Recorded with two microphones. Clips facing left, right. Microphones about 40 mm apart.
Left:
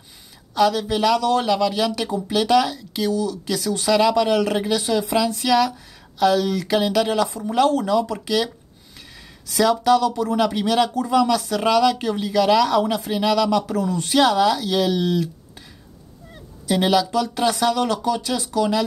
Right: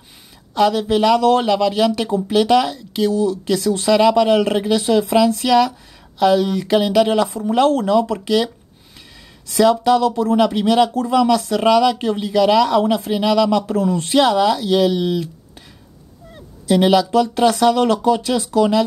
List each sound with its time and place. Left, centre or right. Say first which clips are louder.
0.6 s speech: right 3 dB; right
3.1 s speech: right 5 dB; right
9.6 s speech: right 3 dB; right
13.6 s speech: right 4 dB; right
14.9 s speech: right 2 dB; centre
16.7 s speech: right 5 dB; right